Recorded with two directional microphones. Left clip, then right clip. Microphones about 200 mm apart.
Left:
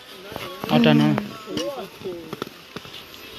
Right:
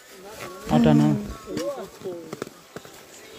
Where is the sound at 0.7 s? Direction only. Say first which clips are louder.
Left 2 dB; 10° right (ahead or behind).